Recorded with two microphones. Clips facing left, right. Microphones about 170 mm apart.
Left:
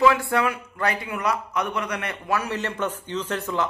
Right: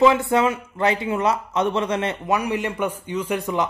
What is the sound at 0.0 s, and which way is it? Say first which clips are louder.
Speech: right 3 dB; 20° right (ahead or behind).